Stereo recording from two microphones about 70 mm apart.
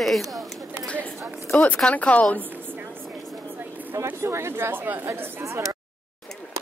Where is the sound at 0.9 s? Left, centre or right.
Centre.